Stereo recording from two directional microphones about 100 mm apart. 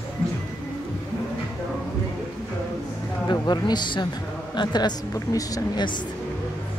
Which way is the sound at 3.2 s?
45° left (ahead or behind).